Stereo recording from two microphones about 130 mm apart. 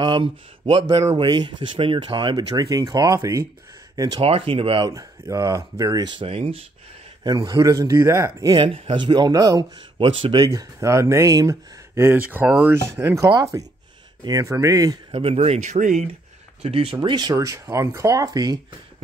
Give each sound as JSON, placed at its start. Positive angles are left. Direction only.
{"t": 0.0, "sound": "speech", "side_deg": -40}
{"t": 4.2, "sound": "speech", "side_deg": -45}
{"t": 4.8, "sound": "speech", "side_deg": -25}
{"t": 7.2, "sound": "speech", "side_deg": -30}
{"t": 8.6, "sound": "speech", "side_deg": -40}
{"t": 9.9, "sound": "speech", "side_deg": -45}
{"t": 10.4, "sound": "speech", "side_deg": -30}
{"t": 15.0, "sound": "speech", "side_deg": -50}
{"t": 16.6, "sound": "speech", "side_deg": -45}